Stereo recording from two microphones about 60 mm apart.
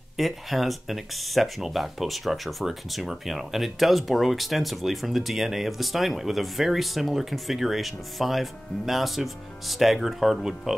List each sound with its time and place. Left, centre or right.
0.2 s speech: centre